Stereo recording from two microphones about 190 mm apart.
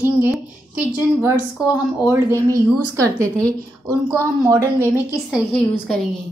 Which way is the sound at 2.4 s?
15° right (ahead or behind).